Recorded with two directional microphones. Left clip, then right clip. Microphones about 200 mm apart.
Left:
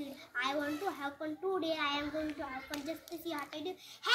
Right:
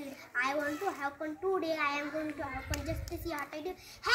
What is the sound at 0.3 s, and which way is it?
A child's voice, 5° right (ahead or behind).